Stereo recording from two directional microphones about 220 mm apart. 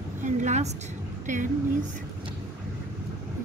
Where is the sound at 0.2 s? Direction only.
35° right (ahead or behind).